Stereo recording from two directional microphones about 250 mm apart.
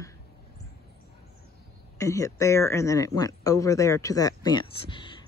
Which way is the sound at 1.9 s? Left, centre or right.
Centre.